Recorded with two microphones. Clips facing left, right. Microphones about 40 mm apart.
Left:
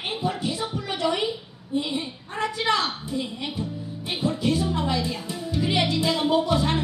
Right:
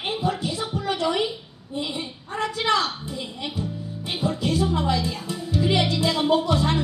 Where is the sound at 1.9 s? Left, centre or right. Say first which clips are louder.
Left 1 dB; centre.